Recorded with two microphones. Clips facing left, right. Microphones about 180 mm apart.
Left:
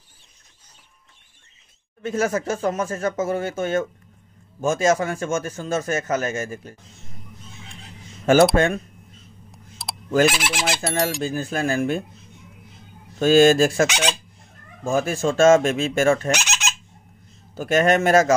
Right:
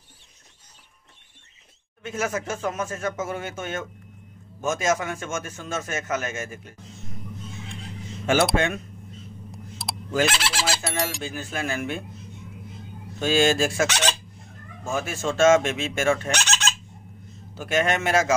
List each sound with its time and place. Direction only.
2.0 s a man's voice: 35° left (ahead or behind)
8.5 s a man's voice: 40° left (ahead or behind)
9.5 s a sound: centre (ahead or behind)
10.2 s speech: 10° left (ahead or behind)
10.8 s speech: centre (ahead or behind)
11.2 s a man's voice: 40° left (ahead or behind)
13.2 s a man's voice: 45° left (ahead or behind)
14.9 s a man's voice: 35° left (ahead or behind)
16.3 s fowl: 10° left (ahead or behind)
17.6 s a man's voice: 40° left (ahead or behind)